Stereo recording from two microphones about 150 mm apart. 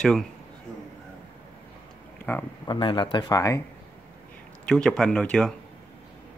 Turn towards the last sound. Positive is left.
turn(degrees=5)  # may be behind; listen again after turning